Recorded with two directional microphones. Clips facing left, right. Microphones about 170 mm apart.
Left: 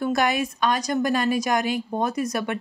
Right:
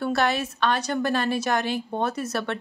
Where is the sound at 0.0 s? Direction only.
15° left (ahead or behind).